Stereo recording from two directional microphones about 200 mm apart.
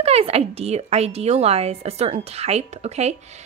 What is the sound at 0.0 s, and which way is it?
A woman's voice, 30° right (ahead or behind).